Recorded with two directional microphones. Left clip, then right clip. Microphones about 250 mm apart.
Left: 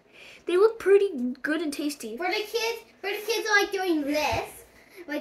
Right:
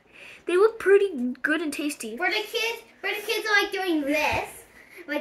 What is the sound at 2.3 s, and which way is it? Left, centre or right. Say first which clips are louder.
A child's voice: left 2 dB; centre.